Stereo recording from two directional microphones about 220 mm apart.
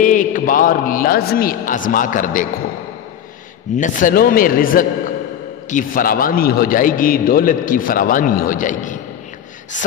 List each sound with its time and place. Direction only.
0.0 s a man's voice: 35° left (ahead or behind)
3.7 s a man's voice: 35° left (ahead or behind)